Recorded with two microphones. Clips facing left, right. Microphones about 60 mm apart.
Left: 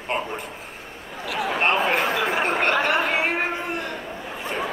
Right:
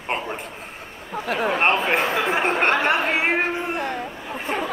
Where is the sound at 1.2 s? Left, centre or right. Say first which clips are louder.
Right 2 dB; right.